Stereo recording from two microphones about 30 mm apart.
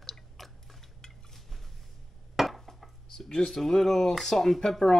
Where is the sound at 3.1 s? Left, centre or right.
Left.